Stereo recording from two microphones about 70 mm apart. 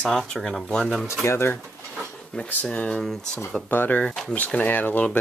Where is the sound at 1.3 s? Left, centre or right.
Left.